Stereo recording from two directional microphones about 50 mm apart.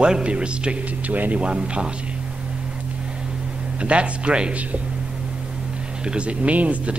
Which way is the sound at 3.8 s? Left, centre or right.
Right.